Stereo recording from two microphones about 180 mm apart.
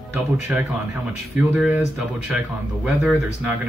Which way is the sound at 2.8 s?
10° right (ahead or behind).